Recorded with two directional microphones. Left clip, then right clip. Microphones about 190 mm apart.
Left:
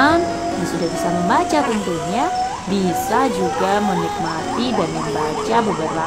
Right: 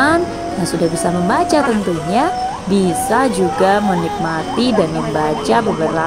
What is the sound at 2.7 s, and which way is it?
Speech, 25° right (ahead or behind).